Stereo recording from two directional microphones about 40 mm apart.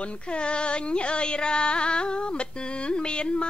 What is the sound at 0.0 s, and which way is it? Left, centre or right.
Music, left.